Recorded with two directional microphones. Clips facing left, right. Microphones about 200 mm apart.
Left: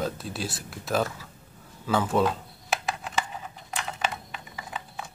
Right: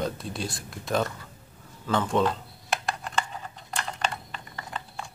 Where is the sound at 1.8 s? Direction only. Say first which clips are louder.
Left 1 dB; 5° left (ahead or behind).